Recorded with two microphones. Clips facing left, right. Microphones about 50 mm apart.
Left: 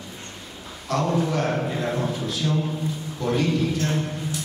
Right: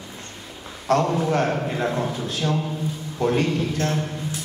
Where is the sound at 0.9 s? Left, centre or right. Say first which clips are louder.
Right 3 dB; right.